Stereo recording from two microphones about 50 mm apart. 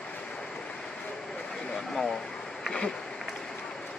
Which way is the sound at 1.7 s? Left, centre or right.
Centre.